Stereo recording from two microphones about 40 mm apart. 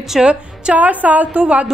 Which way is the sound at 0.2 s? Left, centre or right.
Right.